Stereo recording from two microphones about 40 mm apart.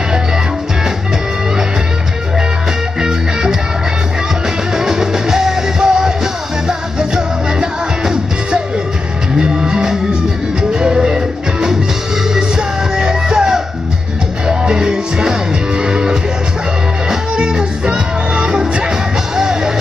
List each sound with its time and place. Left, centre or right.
4.7 s music: centre